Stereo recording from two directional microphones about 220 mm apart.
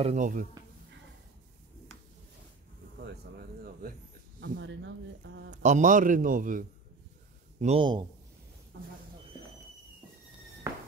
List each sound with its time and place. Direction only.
0.0 s a man's voice: 35° right (ahead or behind)
3.0 s a sound: 45° right (ahead or behind)
4.6 s speech: 55° right (ahead or behind)
5.5 s a man's voice: 35° right (ahead or behind)
7.6 s a man's voice: 25° right (ahead or behind)